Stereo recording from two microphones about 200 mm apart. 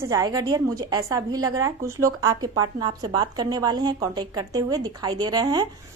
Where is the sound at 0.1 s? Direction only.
15° right (ahead or behind).